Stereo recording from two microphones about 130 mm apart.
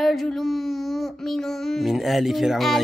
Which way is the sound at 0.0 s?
Centre (ahead or behind).